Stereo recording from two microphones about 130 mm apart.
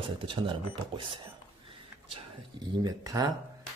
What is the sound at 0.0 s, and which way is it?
Speech, 40° right (ahead or behind).